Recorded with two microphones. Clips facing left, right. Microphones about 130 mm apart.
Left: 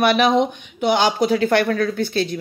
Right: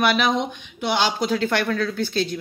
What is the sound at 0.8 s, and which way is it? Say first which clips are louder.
Speech: left 5 dB; 50° left (ahead or behind).